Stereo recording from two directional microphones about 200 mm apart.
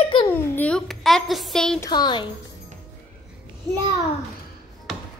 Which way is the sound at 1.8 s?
20° left (ahead or behind).